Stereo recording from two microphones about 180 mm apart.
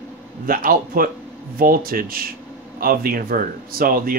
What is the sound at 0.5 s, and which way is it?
Speech, 50° right (ahead or behind).